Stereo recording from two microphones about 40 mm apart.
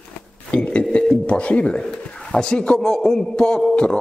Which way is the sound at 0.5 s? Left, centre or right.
Left.